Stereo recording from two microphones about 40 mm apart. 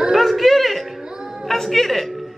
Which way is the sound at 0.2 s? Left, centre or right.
Centre.